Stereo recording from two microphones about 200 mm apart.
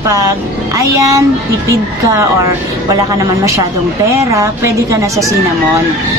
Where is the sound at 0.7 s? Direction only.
15° right (ahead or behind).